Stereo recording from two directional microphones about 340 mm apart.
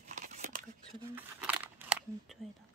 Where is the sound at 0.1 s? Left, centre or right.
Right.